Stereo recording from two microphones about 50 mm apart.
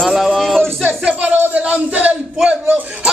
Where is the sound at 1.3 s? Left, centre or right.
Right.